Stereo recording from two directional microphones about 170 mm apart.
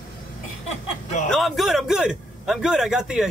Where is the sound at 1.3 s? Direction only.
Centre (ahead or behind).